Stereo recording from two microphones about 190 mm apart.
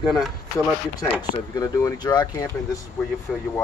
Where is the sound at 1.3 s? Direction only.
20° left (ahead or behind).